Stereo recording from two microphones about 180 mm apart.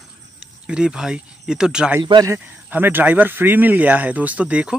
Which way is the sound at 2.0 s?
25° right (ahead or behind).